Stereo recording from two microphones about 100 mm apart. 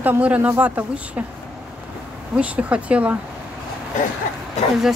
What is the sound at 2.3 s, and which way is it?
Speech, 15° right (ahead or behind).